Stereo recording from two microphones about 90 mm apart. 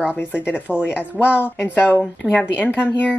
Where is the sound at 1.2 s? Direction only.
15° right (ahead or behind).